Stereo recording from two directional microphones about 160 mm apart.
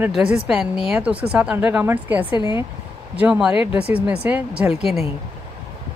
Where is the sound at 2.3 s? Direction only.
30° left (ahead or behind).